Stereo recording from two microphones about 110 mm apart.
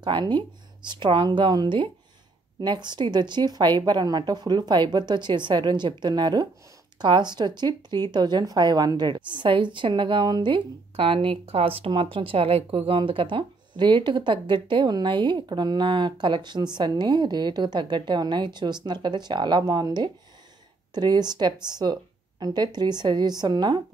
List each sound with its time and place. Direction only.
0.0 s speech: 45° right (ahead or behind)